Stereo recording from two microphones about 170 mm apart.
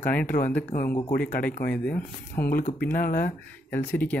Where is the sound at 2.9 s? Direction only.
55° left (ahead or behind).